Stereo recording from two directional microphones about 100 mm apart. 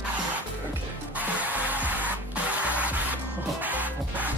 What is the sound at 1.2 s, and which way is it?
Music, 15° right (ahead or behind).